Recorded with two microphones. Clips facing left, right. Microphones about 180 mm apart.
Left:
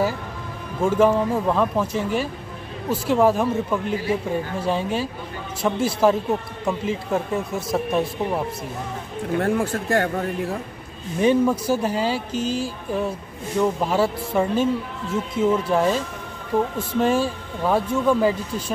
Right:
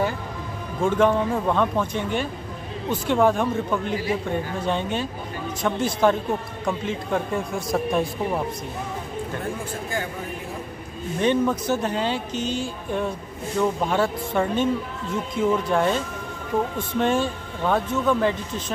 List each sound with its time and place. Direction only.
0.8 s speech: 5° left (ahead or behind)
9.4 s speech: 65° left (ahead or behind)
11.1 s speech: 10° left (ahead or behind)
17.0 s speech: 5° left (ahead or behind)